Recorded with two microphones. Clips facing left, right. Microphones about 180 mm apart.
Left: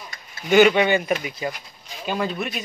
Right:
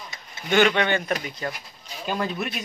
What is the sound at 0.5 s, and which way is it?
Speech, 10° left (ahead or behind).